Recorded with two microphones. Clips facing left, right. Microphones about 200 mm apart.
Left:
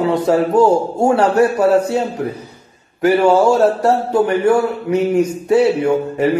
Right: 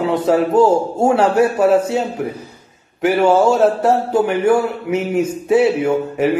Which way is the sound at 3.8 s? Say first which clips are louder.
Left 1 dB; 25° right (ahead or behind).